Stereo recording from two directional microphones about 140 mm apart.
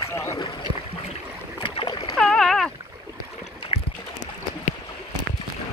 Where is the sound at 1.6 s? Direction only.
35° left (ahead or behind).